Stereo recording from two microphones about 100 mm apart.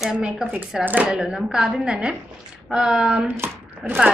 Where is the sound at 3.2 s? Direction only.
25° right (ahead or behind).